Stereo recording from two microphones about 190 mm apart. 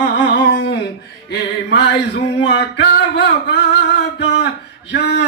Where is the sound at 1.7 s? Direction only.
65° left (ahead or behind).